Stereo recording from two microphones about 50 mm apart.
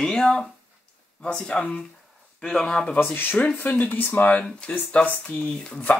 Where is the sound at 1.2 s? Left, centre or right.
Centre.